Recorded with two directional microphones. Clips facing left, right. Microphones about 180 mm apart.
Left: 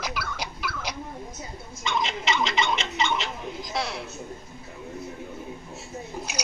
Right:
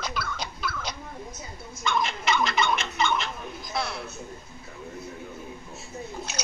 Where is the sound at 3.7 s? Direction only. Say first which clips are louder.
Even; 15° left (ahead or behind).